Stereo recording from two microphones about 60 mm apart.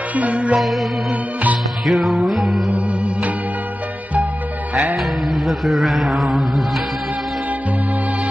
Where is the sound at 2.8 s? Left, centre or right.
Right.